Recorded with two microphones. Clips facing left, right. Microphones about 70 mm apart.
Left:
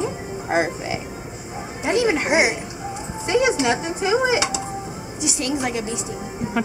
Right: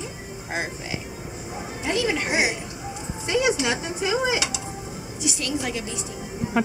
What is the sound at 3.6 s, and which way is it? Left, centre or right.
Speech, centre.